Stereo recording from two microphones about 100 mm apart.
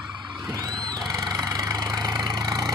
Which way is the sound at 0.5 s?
40° right (ahead or behind).